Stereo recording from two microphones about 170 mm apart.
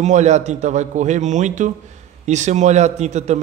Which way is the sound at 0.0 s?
45° right (ahead or behind).